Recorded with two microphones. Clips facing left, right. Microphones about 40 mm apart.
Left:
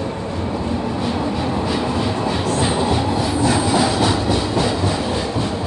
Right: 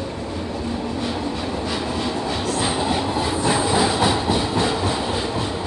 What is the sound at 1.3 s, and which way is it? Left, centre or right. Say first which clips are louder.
Train: left 4 dB; centre.